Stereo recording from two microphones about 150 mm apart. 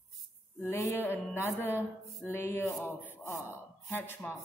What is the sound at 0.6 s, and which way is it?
Speech, 20° left (ahead or behind).